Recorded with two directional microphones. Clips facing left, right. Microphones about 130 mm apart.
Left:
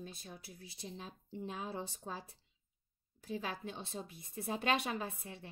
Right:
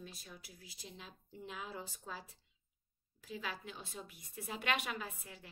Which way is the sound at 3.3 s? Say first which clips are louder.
Left 4 dB; 30° left (ahead or behind).